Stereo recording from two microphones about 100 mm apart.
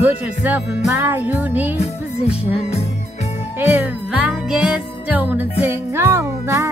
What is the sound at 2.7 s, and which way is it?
Music, 90° left.